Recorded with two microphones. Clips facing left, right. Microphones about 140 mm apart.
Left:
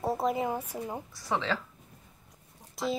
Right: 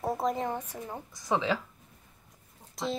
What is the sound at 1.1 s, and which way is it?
Speech, 15° right (ahead or behind).